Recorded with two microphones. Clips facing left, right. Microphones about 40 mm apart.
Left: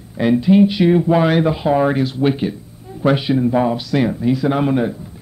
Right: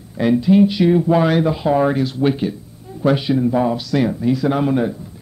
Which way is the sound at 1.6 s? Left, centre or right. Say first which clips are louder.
Left 1 dB; centre.